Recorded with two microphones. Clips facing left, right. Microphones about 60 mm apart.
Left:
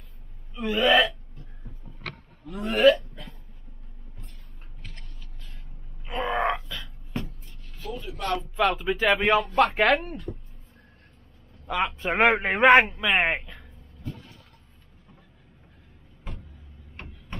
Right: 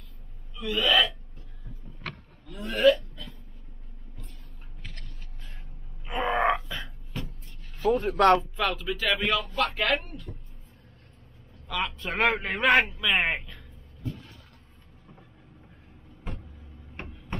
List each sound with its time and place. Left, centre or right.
0.6 s gasp: left
2.4 s speech: left
6.0 s wail: centre
7.8 s speech: right
8.5 s speech: centre
8.8 s a man's voice: left
9.5 s speech: left
11.6 s a man's voice: left
13.0 s speech: centre